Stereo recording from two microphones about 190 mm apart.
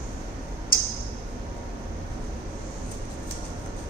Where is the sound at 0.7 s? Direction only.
50° left (ahead or behind).